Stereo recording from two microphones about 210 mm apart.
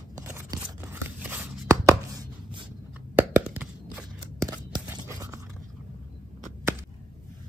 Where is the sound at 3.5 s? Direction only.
5° right (ahead or behind).